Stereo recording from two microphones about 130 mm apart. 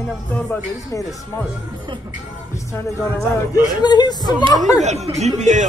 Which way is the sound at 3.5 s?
35° left (ahead or behind).